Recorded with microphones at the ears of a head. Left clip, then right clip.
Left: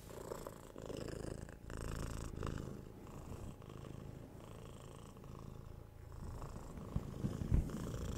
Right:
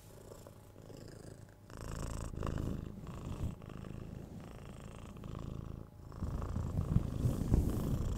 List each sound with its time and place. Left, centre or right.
0.8 s purr: left
2.5 s purr: right
6.2 s purr: right